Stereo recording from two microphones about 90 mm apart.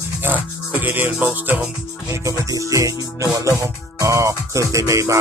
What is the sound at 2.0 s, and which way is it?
Music, 35° right (ahead or behind).